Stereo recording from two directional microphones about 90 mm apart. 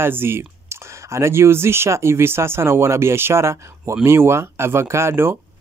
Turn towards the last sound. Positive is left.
turn(degrees=-30)  # may be behind; listen again after turning